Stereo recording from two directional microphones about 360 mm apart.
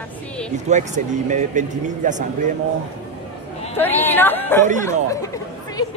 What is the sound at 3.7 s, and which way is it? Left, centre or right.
Speech, centre.